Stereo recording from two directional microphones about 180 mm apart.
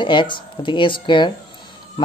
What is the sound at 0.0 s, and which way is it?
Speech, 25° left (ahead or behind).